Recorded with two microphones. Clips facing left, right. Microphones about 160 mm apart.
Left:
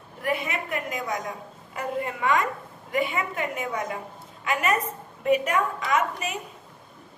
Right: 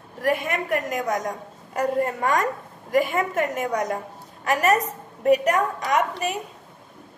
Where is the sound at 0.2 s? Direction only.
45° right (ahead or behind).